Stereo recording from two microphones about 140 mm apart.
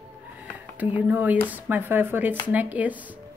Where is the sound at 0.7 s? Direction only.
10° right (ahead or behind).